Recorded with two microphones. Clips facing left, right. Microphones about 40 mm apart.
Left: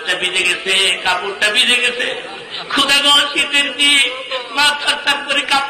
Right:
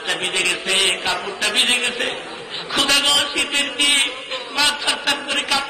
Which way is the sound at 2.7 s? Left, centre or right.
Left.